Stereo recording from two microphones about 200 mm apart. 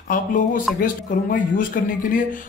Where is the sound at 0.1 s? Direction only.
40° left (ahead or behind).